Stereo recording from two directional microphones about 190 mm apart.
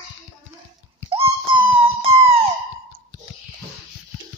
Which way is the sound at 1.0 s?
30° right (ahead or behind).